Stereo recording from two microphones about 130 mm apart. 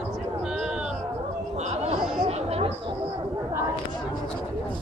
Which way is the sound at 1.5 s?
55° right (ahead or behind).